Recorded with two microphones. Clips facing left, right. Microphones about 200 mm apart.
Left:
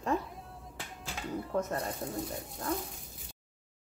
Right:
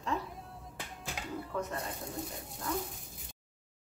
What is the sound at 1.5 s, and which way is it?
Speech, 40° left (ahead or behind).